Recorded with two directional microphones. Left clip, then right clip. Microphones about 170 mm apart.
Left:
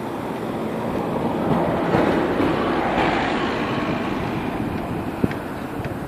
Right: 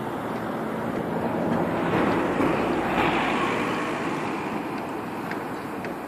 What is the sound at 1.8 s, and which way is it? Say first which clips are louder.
Vehicle: left 3 dB; 50° left (ahead or behind).